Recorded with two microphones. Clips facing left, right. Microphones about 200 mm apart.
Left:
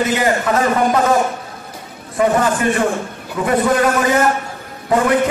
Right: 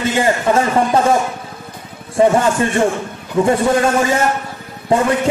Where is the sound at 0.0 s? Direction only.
30° right (ahead or behind).